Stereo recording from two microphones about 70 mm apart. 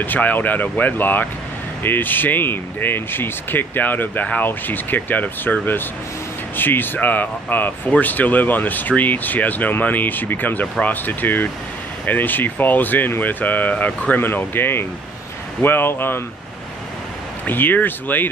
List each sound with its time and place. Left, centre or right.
0.0 s speech: left
17.5 s speech: left